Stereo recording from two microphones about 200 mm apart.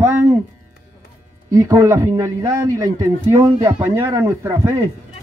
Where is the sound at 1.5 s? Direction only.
15° right (ahead or behind).